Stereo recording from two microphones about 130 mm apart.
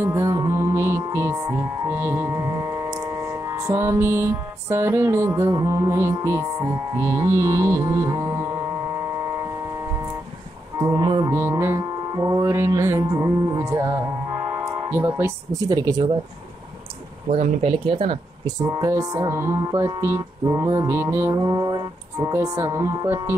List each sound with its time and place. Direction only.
0.0 s music: 20° right (ahead or behind)
10.8 s music: 30° right (ahead or behind)
15.7 s music: 30° right (ahead or behind)
17.3 s speech: 50° right (ahead or behind)
18.7 s music: 25° right (ahead or behind)